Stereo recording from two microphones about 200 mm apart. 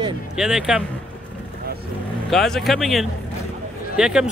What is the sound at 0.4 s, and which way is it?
Speech, centre (ahead or behind).